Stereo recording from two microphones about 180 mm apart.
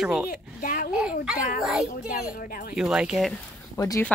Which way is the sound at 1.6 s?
5° right (ahead or behind).